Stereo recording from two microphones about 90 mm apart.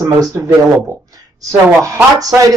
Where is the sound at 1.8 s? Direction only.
40° right (ahead or behind).